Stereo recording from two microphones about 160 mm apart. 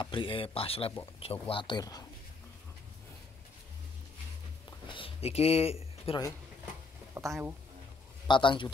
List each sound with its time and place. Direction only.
0.0 s speech: 30° left (ahead or behind)
4.6 s a sound: 30° left (ahead or behind)
7.2 s speech: 15° right (ahead or behind)
8.3 s speech: 30° left (ahead or behind)